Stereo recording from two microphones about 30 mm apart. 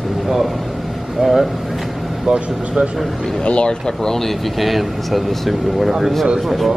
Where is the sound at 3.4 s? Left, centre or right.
Left.